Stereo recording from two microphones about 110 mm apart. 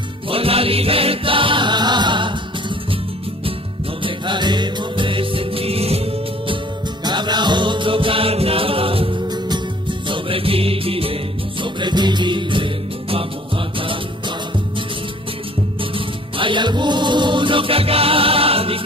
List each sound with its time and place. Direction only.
0.3 s music: 60° right (ahead or behind)
4.0 s music: 45° right (ahead or behind)
7.1 s music: 40° right (ahead or behind); by 9.1 s 55° right (ahead or behind)
9.3 s music: 45° right (ahead or behind)
11.6 s music: 45° right (ahead or behind)
16.3 s music: 50° right (ahead or behind)